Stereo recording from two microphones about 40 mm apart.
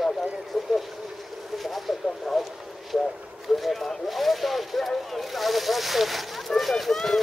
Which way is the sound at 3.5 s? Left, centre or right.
Centre.